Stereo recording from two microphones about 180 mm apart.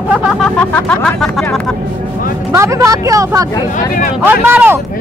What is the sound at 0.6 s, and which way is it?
Speech, 5° left (ahead or behind).